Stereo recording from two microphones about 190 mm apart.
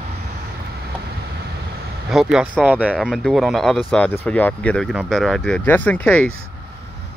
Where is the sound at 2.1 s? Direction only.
5° right (ahead or behind).